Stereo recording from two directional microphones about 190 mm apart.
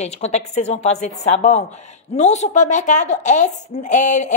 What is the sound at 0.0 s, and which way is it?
Speech, 35° left (ahead or behind).